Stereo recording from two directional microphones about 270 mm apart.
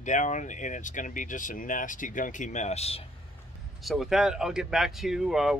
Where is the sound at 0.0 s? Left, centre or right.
Left.